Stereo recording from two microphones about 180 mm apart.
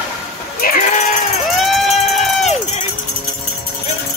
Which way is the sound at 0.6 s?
50° left (ahead or behind).